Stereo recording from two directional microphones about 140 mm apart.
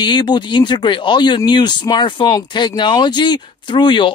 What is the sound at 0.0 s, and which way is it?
Speech, 30° left (ahead or behind).